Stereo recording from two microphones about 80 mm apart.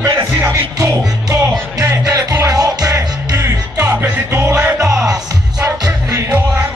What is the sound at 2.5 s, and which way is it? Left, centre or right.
Music, right.